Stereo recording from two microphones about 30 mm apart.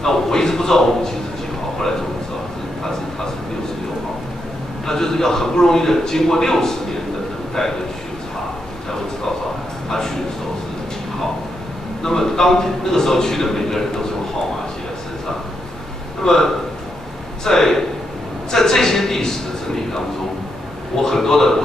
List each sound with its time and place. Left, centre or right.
0.0 s a man's voice: centre
4.8 s a man's voice: centre
9.8 s a sound: centre
12.0 s a man's voice: centre
16.3 s a man's voice: centre
18.5 s a sound: centre
20.9 s a man's voice: centre